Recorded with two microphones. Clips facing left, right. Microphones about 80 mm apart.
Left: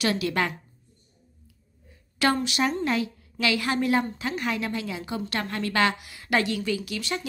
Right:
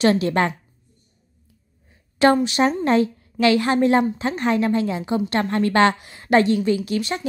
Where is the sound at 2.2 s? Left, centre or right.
Right.